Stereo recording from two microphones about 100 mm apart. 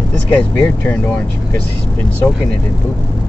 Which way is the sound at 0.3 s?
15° left (ahead or behind).